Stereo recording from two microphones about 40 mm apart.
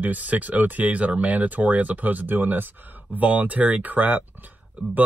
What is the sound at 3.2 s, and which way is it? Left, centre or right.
Speech, right.